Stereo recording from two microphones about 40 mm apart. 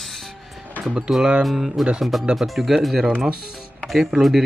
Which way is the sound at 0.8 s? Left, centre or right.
Centre.